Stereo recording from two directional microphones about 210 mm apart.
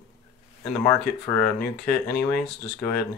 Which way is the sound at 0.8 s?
5° left (ahead or behind).